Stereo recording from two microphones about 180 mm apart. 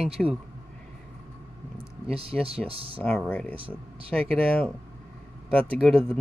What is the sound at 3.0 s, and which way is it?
Speech, 5° left (ahead or behind).